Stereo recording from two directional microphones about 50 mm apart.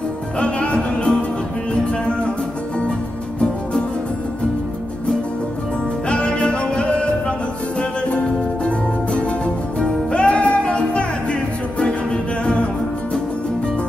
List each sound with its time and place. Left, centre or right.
0.4 s music: left
6.0 s music: left
9.8 s music: left